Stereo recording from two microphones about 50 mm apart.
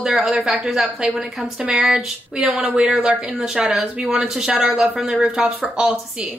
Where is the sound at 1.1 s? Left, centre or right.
Right.